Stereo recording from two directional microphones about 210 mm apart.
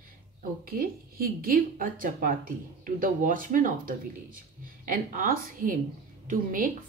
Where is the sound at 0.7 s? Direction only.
45° right (ahead or behind).